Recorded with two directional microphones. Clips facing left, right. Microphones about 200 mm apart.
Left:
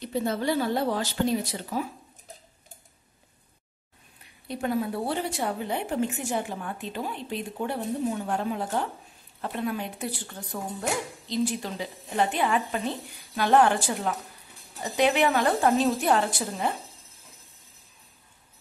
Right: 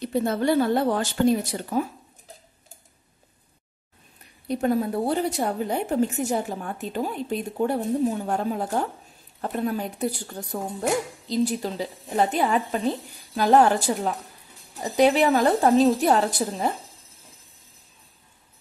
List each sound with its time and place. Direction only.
0.1 s speech: 55° right (ahead or behind)
4.5 s speech: 40° right (ahead or behind)